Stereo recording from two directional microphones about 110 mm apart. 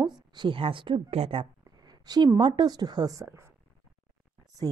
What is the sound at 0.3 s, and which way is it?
Speech, 45° right (ahead or behind).